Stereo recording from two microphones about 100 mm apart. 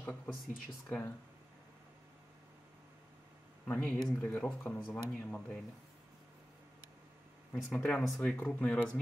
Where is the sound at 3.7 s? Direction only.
10° left (ahead or behind).